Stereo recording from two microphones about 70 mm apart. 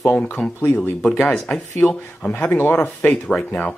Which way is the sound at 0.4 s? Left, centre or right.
Centre.